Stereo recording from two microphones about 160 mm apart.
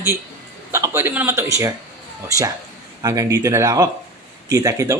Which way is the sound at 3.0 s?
20° right (ahead or behind).